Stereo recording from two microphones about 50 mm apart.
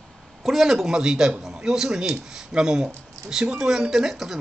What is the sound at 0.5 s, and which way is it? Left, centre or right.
Speech, centre.